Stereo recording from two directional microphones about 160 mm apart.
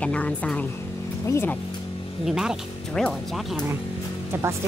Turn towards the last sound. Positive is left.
turn(degrees=-15)  # may be behind; listen again after turning